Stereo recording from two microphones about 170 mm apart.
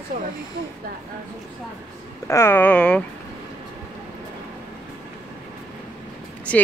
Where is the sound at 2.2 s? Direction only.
15° left (ahead or behind).